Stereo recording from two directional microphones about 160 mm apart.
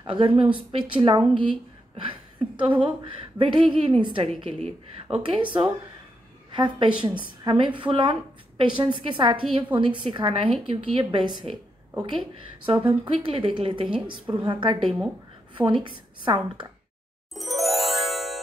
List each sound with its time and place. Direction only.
0.0 s a woman's voice: 30° right (ahead or behind)
14.8 s speech: centre (ahead or behind)
15.5 s a woman's voice: 30° right (ahead or behind)
17.3 s music: centre (ahead or behind)